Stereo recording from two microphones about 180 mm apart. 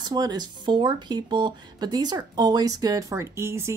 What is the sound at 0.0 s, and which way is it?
Speech, 20° right (ahead or behind).